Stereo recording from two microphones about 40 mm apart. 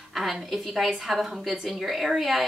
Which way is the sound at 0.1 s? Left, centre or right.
Centre.